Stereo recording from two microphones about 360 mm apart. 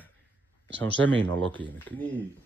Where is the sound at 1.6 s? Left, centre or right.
Centre.